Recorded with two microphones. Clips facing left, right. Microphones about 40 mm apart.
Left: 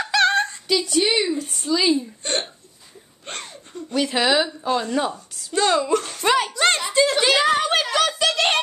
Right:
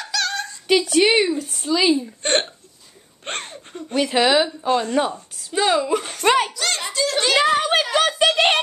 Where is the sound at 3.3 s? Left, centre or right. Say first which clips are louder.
Right 5 dB; right.